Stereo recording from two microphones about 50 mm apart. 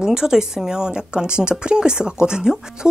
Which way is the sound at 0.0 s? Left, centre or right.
Centre.